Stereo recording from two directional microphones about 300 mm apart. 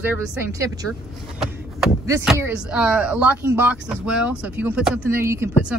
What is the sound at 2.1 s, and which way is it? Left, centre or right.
Speech, centre.